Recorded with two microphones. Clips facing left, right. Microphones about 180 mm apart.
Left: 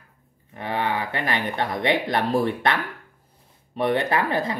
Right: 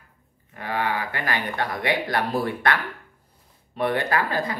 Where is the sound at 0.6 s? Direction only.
20° left (ahead or behind).